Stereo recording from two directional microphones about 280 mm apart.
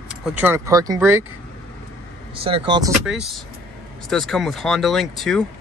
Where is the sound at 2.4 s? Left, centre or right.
Centre.